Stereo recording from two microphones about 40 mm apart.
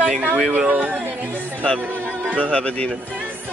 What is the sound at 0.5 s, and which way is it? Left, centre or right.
Speech, right.